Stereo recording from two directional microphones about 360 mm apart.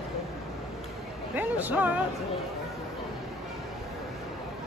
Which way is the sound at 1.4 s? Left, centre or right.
Centre.